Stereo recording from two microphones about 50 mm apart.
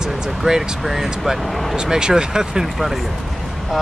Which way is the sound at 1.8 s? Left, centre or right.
Centre.